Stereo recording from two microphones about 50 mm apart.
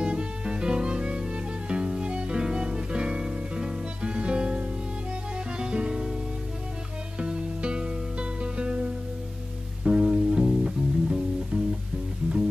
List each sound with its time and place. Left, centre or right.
0.0 s music: centre
7.2 s music: centre
9.8 s music: centre